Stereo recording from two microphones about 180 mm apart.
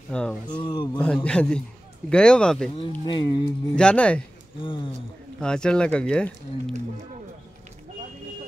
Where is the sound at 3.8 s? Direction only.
5° left (ahead or behind).